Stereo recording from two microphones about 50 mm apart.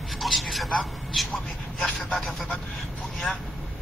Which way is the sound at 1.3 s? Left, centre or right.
Centre.